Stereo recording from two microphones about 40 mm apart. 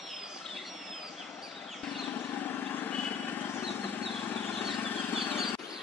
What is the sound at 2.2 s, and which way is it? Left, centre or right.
Vehicle, left.